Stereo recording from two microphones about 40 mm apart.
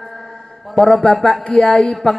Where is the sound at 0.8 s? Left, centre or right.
Centre.